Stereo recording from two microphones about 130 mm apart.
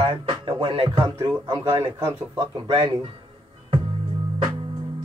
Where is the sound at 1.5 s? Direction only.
20° right (ahead or behind).